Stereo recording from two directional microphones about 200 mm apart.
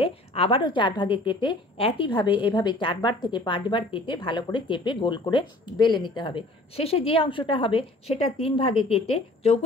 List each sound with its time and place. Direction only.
0.0 s a woman's voice: 30° left (ahead or behind)